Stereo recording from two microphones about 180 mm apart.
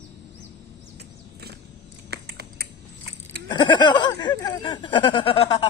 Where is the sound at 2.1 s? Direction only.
65° right (ahead or behind).